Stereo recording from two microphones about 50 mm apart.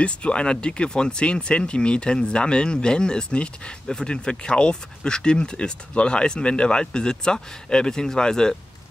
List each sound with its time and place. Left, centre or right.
0.0 s speech: left